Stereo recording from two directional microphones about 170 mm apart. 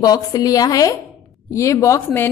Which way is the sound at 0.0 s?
20° left (ahead or behind).